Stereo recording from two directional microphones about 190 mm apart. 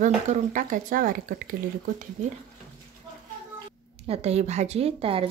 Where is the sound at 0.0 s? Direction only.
40° right (ahead or behind).